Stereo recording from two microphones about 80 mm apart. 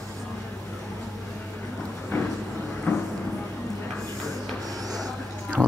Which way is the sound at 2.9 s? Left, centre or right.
Left.